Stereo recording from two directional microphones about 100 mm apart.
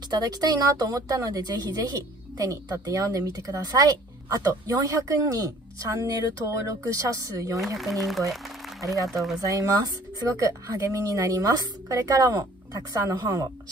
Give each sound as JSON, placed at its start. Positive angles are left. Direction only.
{"t": 0.1, "sound": "a woman's voice", "side_deg": -40}
{"t": 7.5, "sound": "speech", "side_deg": 0}
{"t": 9.4, "sound": "a woman's voice", "side_deg": -35}